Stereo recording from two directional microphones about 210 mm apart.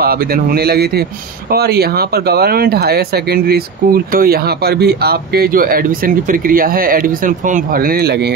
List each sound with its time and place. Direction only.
0.0 s speech: 45° right (ahead or behind)